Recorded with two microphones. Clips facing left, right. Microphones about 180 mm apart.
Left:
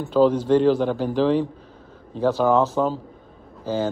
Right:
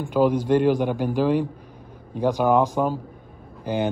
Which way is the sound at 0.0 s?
10° right (ahead or behind).